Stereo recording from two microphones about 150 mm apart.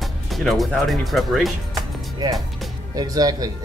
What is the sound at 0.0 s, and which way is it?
Speech, centre (ahead or behind).